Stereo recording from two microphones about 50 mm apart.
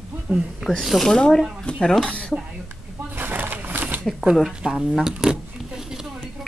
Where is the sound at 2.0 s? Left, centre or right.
Left.